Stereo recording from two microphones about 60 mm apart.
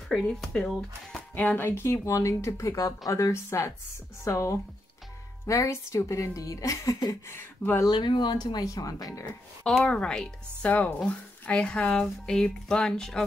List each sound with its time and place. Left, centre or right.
0.1 s speech: centre
1.3 s speech: left
6.3 s speech: left
7.2 s speech: left
8.4 s speech: left
9.7 s speech: centre
10.7 s speech: left; by 13.2 s centre